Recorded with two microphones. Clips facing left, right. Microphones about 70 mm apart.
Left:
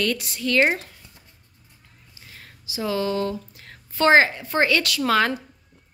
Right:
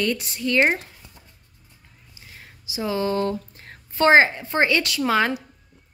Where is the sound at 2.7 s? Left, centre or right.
Right.